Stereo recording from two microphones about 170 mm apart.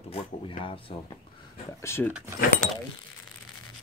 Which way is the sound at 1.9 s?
15° left (ahead or behind).